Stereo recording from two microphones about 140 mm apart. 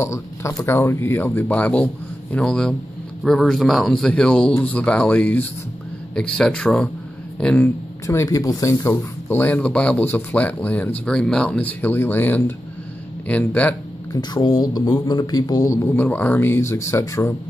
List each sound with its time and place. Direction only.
0.0 s speech: 20° left (ahead or behind)
8.1 s speech: 20° left (ahead or behind)
14.1 s speech: 30° left (ahead or behind)